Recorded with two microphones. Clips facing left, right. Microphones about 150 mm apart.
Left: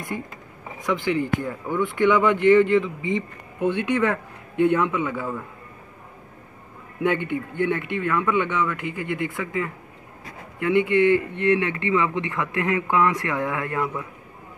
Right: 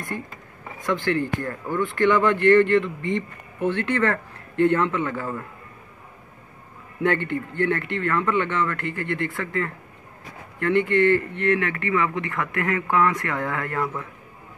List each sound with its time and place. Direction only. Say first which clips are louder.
0.8 s speech: even; 5° left (ahead or behind)
7.0 s speech: even; 10° left (ahead or behind)